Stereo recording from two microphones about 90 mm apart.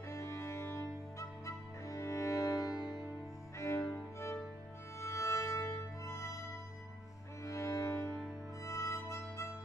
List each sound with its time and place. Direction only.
0.1 s music: 35° left (ahead or behind)
3.5 s music: 30° left (ahead or behind)
7.4 s cello: 35° left (ahead or behind)
8.6 s music: 35° left (ahead or behind)